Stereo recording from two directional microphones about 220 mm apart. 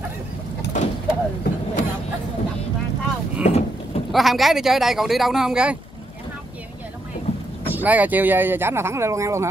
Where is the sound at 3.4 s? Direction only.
30° left (ahead or behind).